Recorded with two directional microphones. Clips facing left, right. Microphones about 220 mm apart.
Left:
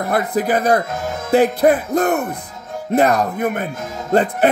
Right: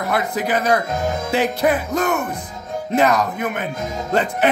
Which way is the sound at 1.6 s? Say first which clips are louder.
Left 3 dB; 40° left (ahead or behind).